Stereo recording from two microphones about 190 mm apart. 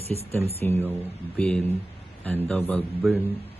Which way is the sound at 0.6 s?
10° left (ahead or behind).